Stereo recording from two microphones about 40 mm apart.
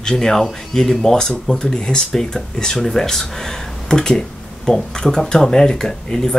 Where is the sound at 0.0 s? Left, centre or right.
Centre.